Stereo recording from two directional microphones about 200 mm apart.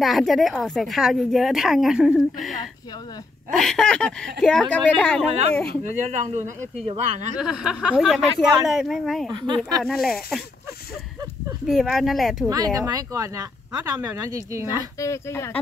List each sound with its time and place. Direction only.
0.0 s a woman's voice: centre (ahead or behind)
3.5 s a woman's voice: 5° left (ahead or behind)
5.9 s speech: 35° right (ahead or behind)
7.3 s a woman's voice: 5° right (ahead or behind)
9.3 s speech: 20° right (ahead or behind)
9.8 s a woman's voice: centre (ahead or behind)
11.6 s a woman's voice: centre (ahead or behind)
12.4 s speech: 20° right (ahead or behind)
15.0 s speech: 15° left (ahead or behind)